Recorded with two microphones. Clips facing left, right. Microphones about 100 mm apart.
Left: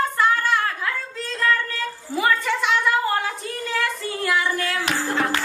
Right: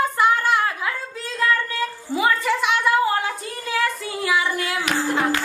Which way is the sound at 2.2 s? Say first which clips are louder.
Right 1 dB; 5° right (ahead or behind).